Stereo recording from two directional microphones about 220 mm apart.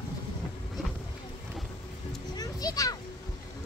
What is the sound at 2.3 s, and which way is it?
Children playing, 15° left (ahead or behind).